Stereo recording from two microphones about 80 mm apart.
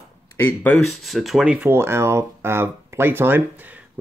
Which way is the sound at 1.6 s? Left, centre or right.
Right.